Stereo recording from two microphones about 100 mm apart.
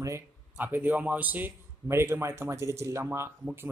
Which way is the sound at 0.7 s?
15° right (ahead or behind).